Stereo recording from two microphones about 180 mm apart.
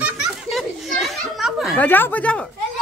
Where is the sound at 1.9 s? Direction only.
10° left (ahead or behind).